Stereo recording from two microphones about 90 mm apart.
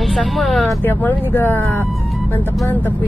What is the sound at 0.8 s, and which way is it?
Speech, 20° left (ahead or behind).